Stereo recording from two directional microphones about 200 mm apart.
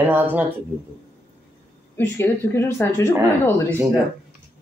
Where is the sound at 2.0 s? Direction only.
10° left (ahead or behind).